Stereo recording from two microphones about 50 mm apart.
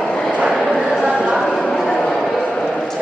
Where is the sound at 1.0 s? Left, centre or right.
Centre.